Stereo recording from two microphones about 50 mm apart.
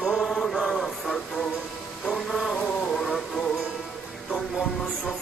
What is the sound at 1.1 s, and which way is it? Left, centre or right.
Music, centre.